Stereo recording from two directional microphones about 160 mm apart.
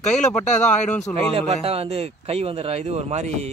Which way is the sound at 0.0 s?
45° left (ahead or behind).